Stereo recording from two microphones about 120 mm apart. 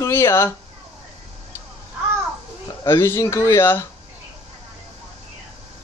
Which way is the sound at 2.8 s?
25° left (ahead or behind).